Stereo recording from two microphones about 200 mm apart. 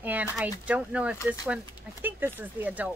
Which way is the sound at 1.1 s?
20° left (ahead or behind).